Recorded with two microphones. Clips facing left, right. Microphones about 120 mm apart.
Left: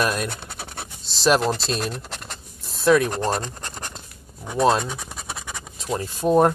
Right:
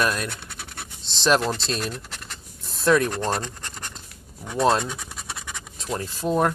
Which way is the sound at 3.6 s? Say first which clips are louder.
Left 3 dB; 45° left (ahead or behind).